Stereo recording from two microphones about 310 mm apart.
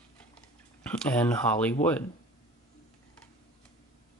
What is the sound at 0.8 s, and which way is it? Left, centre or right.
Speech, centre.